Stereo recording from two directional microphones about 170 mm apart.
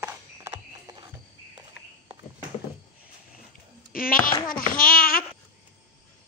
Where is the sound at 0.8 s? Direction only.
25° right (ahead or behind).